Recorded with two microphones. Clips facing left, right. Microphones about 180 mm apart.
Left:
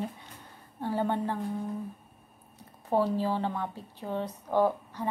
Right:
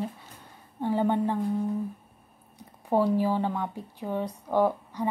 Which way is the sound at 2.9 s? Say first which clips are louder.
Right 3 dB; 15° right (ahead or behind).